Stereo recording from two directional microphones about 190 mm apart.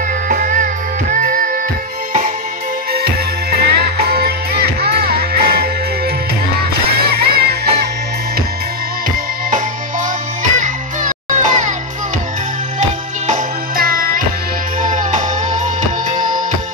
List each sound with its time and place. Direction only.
0.3 s music: 40° right (ahead or behind)
3.5 s music: 55° right (ahead or behind)
7.1 s music: 55° right (ahead or behind)
10.6 s music: 40° right (ahead or behind)
13.3 s music: 50° right (ahead or behind)